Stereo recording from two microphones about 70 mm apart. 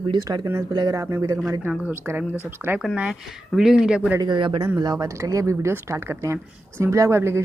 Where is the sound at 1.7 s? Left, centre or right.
Right.